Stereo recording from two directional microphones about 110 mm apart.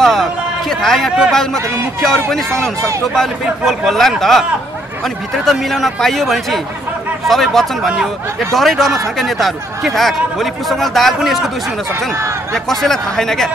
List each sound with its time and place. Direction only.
0.0 s a man's voice: 5° left (ahead or behind)
12.1 s speech: 25° right (ahead or behind)
12.5 s speech: 5° left (ahead or behind)